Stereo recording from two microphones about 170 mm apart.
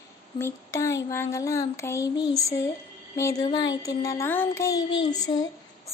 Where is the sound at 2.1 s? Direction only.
20° left (ahead or behind).